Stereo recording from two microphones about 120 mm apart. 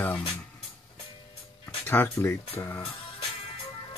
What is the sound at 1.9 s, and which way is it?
Speech, 20° left (ahead or behind).